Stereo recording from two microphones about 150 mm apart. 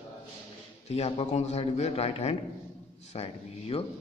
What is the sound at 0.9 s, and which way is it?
A man's voice, 45° left (ahead or behind).